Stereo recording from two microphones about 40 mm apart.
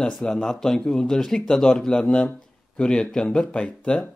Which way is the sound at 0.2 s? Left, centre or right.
Centre.